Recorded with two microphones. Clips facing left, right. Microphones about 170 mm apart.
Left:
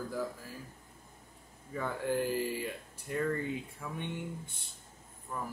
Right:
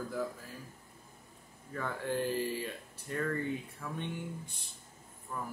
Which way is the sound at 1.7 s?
5° left (ahead or behind).